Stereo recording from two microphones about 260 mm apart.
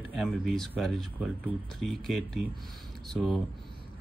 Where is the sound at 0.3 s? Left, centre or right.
Centre.